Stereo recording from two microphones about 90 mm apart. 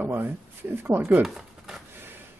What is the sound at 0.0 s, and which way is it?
A man's voice, 25° right (ahead or behind).